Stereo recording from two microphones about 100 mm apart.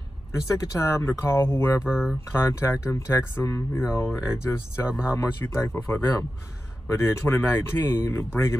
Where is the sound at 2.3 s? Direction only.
25° left (ahead or behind).